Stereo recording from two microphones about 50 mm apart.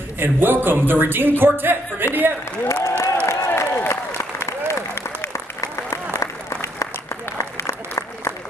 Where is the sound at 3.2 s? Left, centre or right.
Left.